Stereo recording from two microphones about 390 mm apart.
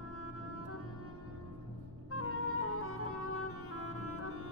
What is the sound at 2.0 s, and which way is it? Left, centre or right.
Music, left.